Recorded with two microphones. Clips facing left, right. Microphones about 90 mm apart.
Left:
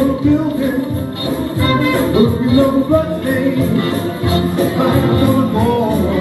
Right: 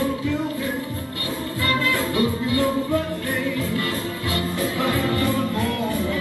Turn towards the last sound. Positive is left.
turn(degrees=30)  # may be behind; listen again after turning